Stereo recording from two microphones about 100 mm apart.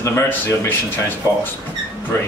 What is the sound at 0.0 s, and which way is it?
Speech, 25° left (ahead or behind).